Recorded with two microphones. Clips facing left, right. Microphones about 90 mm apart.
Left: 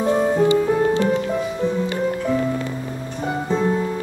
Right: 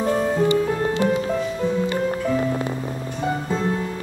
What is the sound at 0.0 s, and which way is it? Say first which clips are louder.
Music: left 3 dB; 20° left (ahead or behind).